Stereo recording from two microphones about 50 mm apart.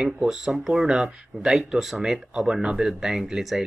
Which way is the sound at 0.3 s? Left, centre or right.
Centre.